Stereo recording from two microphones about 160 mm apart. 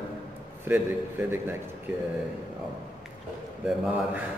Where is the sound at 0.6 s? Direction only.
15° right (ahead or behind).